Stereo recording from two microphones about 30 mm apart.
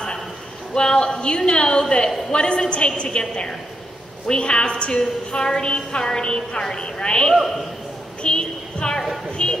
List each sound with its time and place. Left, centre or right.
0.7 s a woman's voice: left
4.9 s a woman's voice: left
8.2 s a sound: left
9.4 s music: left